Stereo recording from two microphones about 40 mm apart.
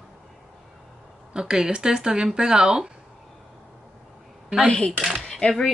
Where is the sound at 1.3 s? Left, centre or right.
Right.